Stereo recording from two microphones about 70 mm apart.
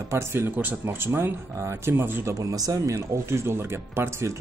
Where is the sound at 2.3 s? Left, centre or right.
Right.